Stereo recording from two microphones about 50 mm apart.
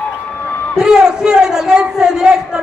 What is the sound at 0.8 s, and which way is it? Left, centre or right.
A man's voice, centre.